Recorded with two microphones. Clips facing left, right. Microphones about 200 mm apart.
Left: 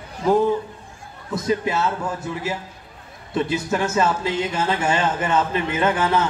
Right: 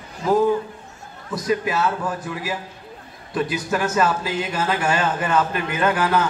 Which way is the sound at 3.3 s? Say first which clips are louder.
Left 1 dB; 25° left (ahead or behind).